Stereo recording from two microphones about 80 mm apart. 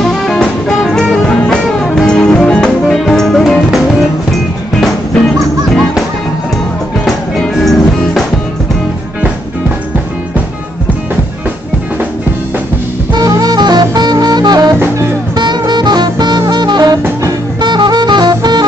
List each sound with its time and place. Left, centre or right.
0.0 s music: centre
7.3 s music: centre
13.4 s music: right
17.6 s saxophone: right